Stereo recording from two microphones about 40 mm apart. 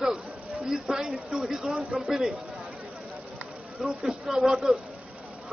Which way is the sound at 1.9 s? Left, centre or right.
Centre.